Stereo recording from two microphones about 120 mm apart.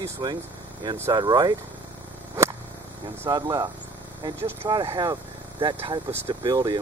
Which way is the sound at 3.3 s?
35° right (ahead or behind).